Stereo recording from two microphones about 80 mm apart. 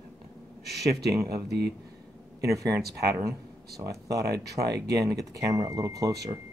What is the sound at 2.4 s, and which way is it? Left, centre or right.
Speech, right.